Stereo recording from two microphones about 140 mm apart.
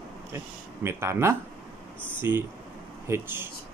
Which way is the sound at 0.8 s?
20° right (ahead or behind).